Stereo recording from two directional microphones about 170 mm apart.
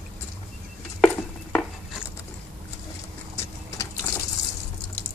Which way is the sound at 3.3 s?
20° left (ahead or behind).